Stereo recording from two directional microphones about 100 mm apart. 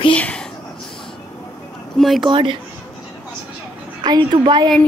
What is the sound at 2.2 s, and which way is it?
Speech, 55° right (ahead or behind).